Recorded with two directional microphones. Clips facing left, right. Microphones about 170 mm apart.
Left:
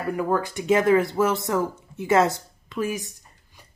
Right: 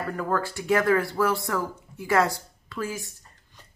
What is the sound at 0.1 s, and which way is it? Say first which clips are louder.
Speech: left 5 dB; 15° left (ahead or behind).